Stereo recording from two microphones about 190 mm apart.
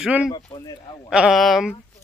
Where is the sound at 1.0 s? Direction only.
5° right (ahead or behind).